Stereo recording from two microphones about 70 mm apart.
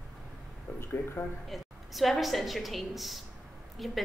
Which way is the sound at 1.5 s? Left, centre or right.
Centre.